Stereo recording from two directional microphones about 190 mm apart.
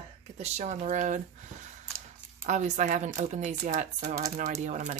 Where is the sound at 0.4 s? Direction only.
35° right (ahead or behind).